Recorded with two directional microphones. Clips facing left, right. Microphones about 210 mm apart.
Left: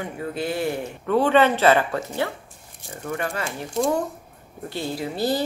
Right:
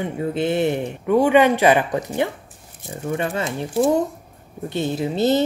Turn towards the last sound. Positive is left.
turn(degrees=-20)  # may be behind; listen again after turning